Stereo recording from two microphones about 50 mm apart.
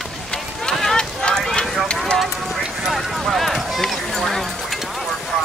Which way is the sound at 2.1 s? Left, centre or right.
Centre.